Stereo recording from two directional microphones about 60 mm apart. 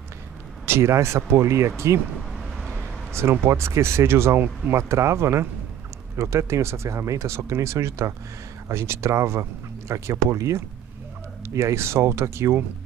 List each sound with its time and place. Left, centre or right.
0.7 s speech: right
2.3 s vehicle: centre
3.1 s speech: right